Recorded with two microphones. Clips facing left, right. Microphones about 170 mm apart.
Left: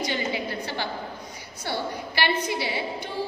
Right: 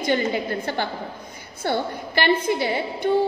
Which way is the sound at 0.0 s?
50° right (ahead or behind).